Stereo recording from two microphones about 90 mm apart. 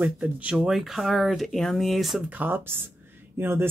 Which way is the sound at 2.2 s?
20° right (ahead or behind).